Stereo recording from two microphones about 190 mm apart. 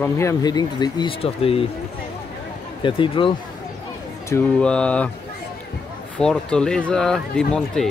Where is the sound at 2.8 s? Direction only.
25° left (ahead or behind).